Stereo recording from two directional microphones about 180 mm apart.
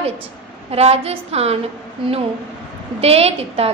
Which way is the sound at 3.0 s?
35° right (ahead or behind).